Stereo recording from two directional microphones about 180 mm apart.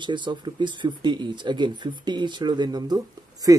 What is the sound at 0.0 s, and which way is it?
Speech, 25° right (ahead or behind).